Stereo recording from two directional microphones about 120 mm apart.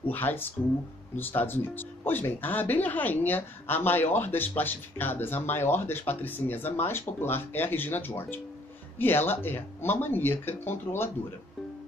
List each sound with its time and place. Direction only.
0.1 s speech: 15° left (ahead or behind)